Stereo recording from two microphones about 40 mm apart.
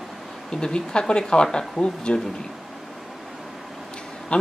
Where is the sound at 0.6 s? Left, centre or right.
Left.